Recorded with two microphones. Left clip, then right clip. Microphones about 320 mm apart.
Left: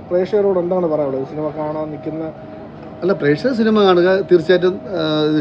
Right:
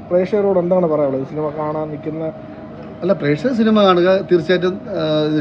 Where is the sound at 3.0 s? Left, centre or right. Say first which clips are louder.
Left 1 dB; centre.